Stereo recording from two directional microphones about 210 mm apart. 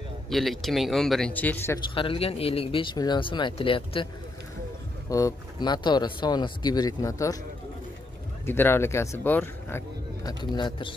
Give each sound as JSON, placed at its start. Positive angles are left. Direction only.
{"t": 0.3, "sound": "speech", "side_deg": 0}
{"t": 2.0, "sound": "speech", "side_deg": 25}
{"t": 5.1, "sound": "speech", "side_deg": 20}
{"t": 8.5, "sound": "speech", "side_deg": 10}